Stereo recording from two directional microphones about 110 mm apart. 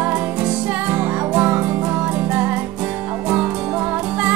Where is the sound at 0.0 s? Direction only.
15° right (ahead or behind).